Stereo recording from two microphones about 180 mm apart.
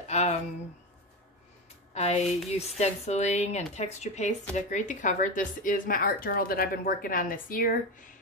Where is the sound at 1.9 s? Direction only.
35° left (ahead or behind).